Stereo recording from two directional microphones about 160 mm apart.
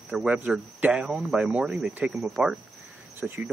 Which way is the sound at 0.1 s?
5° right (ahead or behind).